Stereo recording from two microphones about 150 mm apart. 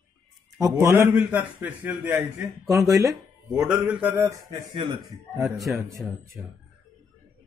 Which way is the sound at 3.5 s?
10° right (ahead or behind).